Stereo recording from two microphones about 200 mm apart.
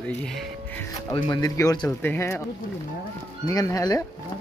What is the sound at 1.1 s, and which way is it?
Speech, 20° left (ahead or behind).